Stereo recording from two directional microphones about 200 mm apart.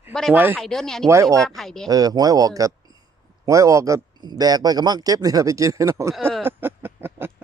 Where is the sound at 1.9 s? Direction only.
20° right (ahead or behind).